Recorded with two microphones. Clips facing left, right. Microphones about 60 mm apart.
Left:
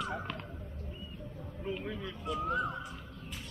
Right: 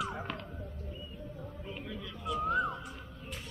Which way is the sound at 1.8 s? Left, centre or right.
Left.